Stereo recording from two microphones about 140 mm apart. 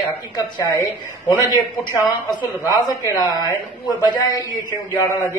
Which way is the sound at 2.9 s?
25° left (ahead or behind).